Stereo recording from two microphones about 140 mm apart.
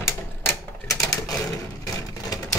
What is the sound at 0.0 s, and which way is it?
Typewriter, 15° left (ahead or behind).